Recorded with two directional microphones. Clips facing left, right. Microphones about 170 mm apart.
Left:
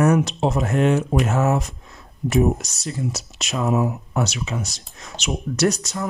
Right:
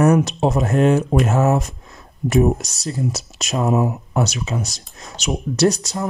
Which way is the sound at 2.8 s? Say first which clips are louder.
Right 4 dB; 40° right (ahead or behind).